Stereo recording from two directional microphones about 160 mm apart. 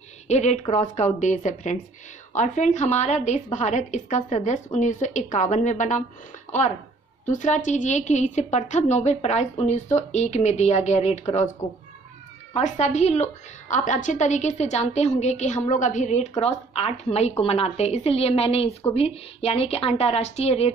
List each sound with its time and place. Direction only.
0.3 s a woman's voice: 45° left (ahead or behind)
12.5 s a woman's voice: 45° left (ahead or behind)